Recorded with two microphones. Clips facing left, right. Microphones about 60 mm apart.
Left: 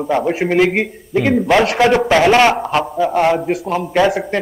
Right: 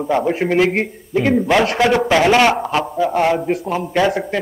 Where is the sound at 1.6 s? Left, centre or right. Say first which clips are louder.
Left 2 dB; centre.